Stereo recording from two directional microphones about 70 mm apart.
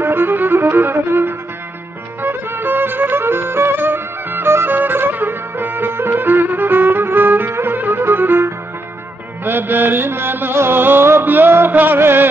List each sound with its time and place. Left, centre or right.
0.0 s violin: right
2.2 s music: right